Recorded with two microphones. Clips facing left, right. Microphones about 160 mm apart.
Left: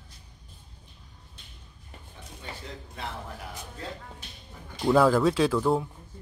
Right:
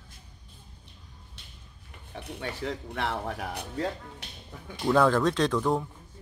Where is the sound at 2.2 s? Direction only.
65° right (ahead or behind).